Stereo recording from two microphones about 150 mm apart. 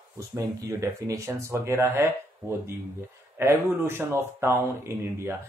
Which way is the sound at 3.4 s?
15° right (ahead or behind).